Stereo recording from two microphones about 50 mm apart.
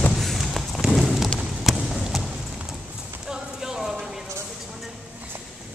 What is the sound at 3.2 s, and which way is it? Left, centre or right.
Clip-clop, centre.